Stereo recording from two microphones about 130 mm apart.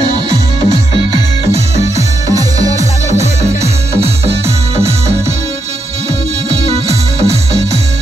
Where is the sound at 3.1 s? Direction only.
55° right (ahead or behind).